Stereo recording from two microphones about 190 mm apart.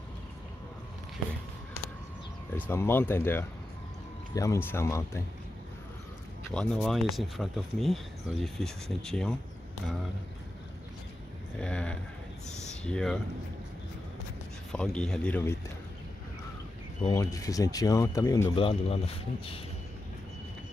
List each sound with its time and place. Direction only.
2.5 s speech: 10° left (ahead or behind)
6.5 s speech: 5° left (ahead or behind)
11.6 s speech: 5° left (ahead or behind)
14.7 s speech: 5° left (ahead or behind)
17.0 s speech: 15° left (ahead or behind)